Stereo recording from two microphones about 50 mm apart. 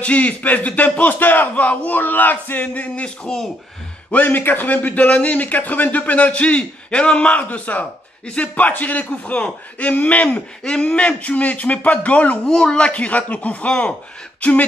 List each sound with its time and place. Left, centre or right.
0.0 s a man's voice: left
4.1 s a man's voice: left
10.6 s speech: centre
10.9 s speech: left
12.4 s speech: centre; by 14.7 s left